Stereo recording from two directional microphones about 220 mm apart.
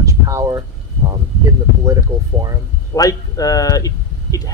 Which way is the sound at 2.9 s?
15° left (ahead or behind).